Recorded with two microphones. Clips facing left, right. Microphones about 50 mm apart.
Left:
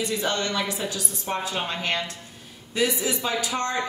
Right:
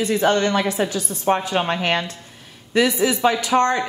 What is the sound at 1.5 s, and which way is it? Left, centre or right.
A woman's voice, right.